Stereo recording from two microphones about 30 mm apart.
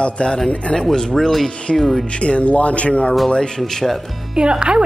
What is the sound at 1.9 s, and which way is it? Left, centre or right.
A man's voice, left.